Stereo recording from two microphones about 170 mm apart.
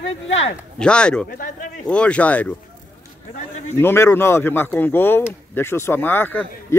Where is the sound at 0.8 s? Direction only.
5° left (ahead or behind).